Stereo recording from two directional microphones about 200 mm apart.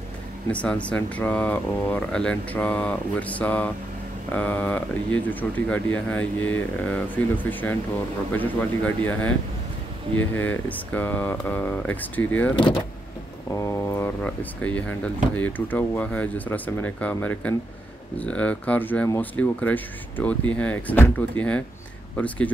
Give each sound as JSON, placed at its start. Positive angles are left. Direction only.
{"t": 0.5, "sound": "speech", "side_deg": 5}